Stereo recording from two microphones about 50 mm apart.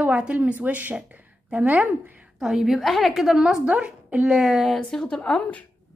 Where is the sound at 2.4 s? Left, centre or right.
Centre.